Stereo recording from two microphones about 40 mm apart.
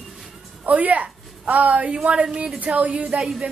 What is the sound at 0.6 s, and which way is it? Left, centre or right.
A woman's voice, right.